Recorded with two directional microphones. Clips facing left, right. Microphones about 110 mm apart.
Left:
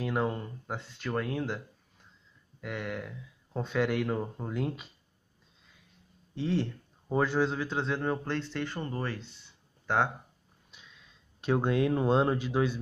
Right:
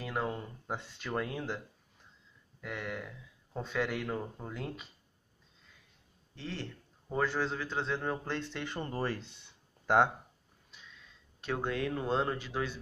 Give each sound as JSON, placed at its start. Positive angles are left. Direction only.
{"t": 0.0, "sound": "speech", "side_deg": 5}
{"t": 2.6, "sound": "speech", "side_deg": 5}
{"t": 6.3, "sound": "a man's voice", "side_deg": 10}
{"t": 8.3, "sound": "speech", "side_deg": -15}
{"t": 8.8, "sound": "speech", "side_deg": -30}
{"t": 11.4, "sound": "a man's voice", "side_deg": 20}